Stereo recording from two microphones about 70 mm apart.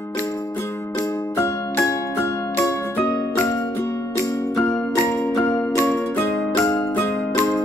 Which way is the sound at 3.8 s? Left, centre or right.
Left.